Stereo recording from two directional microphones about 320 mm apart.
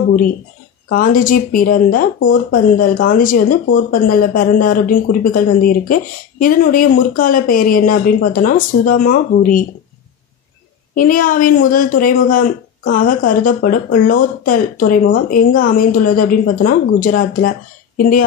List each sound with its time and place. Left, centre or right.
0.8 s speech: left
11.0 s speech: left